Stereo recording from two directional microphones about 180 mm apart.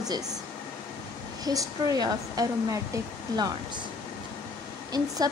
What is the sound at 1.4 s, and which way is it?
Speech, 20° right (ahead or behind).